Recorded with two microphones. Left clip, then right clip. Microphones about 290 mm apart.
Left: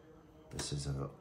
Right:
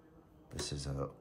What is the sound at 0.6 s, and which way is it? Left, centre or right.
Speech, centre.